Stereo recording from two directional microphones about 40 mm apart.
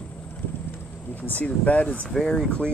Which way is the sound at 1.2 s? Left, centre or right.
Left.